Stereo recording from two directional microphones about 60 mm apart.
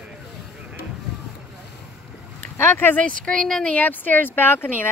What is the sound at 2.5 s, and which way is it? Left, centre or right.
Speech, left.